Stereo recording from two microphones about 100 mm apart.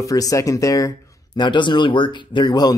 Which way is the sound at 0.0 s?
35° left (ahead or behind).